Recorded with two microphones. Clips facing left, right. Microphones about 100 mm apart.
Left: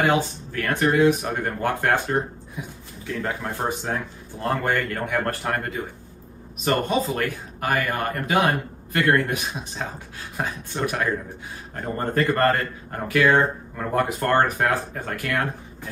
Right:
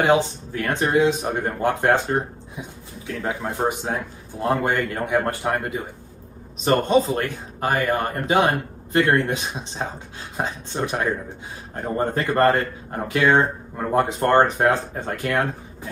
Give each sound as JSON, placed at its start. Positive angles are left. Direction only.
{"t": 0.0, "sound": "speech", "side_deg": -20}